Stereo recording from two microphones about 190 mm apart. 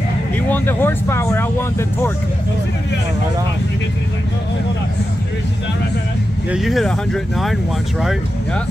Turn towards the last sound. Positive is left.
turn(degrees=0)  # may be behind; listen again after turning